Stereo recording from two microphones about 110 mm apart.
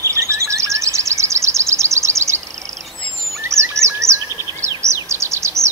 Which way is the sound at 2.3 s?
90° right.